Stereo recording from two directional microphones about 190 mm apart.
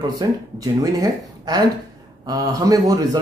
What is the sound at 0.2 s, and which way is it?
Speech, 20° right (ahead or behind).